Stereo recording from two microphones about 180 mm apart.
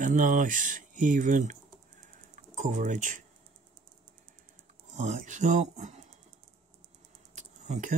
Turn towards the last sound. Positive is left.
turn(degrees=-40)  # may be behind; listen again after turning